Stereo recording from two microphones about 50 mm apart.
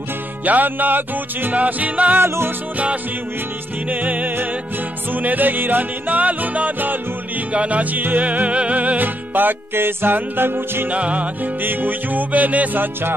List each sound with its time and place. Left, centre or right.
0.5 s music: right
2.1 s music: right
3.9 s music: right
10.9 s music: right
11.6 s music: right